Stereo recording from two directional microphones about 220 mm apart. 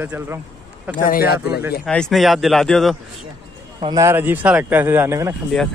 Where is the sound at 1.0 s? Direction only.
40° left (ahead or behind).